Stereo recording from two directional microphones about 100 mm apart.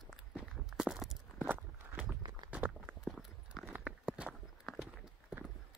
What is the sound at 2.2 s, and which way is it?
Walk, 45° right (ahead or behind).